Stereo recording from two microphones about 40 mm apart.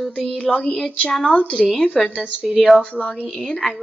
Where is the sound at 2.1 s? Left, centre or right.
Right.